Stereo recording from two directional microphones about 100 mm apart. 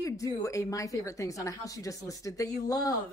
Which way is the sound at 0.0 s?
35° left (ahead or behind).